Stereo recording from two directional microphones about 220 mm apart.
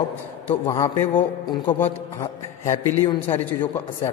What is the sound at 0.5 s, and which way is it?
A man's voice, 15° left (ahead or behind).